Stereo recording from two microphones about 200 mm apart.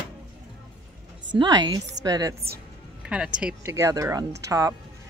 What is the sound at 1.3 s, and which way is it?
A woman's voice, 20° right (ahead or behind).